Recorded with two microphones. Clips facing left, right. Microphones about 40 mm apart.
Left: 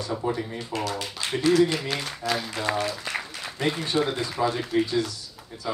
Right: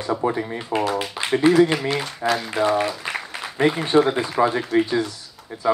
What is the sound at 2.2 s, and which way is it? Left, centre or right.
Speech, right.